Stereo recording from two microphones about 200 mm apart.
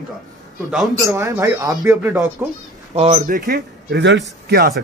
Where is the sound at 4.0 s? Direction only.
65° right (ahead or behind).